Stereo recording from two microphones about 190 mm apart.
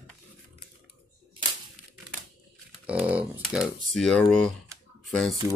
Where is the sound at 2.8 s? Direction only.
5° right (ahead or behind).